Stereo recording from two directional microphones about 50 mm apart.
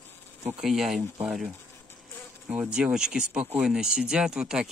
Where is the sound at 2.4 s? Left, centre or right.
Centre.